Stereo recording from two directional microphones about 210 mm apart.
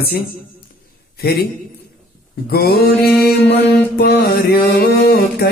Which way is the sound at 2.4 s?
45° left (ahead or behind).